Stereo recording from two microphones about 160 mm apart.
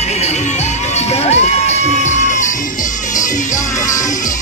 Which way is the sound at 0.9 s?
45° left (ahead or behind).